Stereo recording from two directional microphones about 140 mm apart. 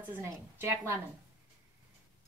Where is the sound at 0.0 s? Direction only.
15° right (ahead or behind).